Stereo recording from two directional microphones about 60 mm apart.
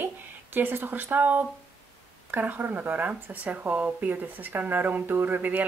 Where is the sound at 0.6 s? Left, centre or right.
Right.